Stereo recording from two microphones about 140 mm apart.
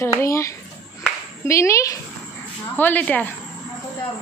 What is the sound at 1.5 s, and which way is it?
A woman's voice, 20° left (ahead or behind).